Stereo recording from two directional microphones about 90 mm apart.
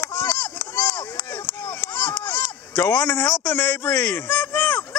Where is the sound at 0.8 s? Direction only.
55° left (ahead or behind).